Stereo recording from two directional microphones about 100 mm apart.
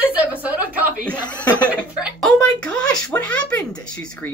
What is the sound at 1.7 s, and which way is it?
Speech, 10° right (ahead or behind).